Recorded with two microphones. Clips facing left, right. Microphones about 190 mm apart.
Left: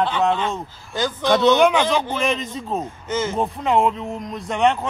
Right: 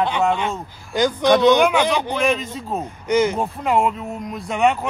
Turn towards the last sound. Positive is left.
turn(degrees=-5)  # may be behind; listen again after turning